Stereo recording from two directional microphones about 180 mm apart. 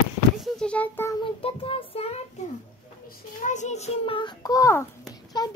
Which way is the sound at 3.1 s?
45° left (ahead or behind).